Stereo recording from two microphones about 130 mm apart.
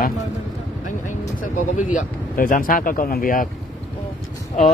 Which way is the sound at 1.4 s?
80° left.